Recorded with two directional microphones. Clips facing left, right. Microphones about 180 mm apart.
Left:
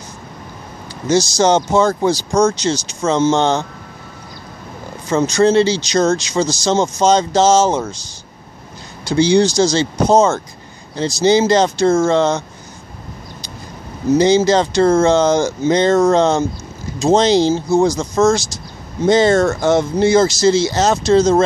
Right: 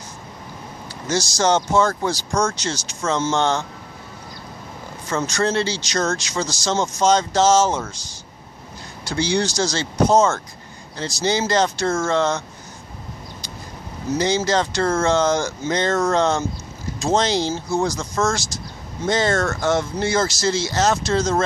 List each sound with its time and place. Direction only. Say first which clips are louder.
1.0 s speech: left 6 dB; 20° left (ahead or behind)
5.1 s speech: left 9 dB; 20° left (ahead or behind)
9.0 s speech: left 9 dB; 20° left (ahead or behind)
14.1 s speech: left 8 dB; 20° left (ahead or behind)